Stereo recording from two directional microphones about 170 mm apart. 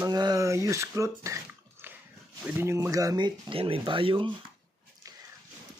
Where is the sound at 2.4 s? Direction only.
15° right (ahead or behind); by 4.3 s 30° right (ahead or behind).